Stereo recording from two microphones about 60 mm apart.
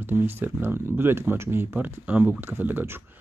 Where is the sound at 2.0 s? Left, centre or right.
Right.